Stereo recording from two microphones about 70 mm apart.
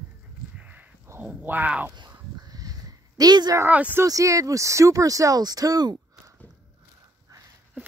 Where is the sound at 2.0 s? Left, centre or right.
Right.